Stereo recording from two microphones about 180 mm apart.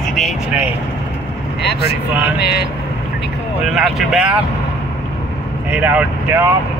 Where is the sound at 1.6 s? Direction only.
65° left (ahead or behind).